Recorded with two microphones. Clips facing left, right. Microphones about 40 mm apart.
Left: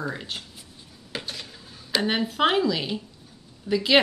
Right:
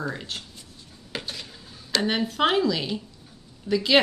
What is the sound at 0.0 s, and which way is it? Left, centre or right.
Speech, centre.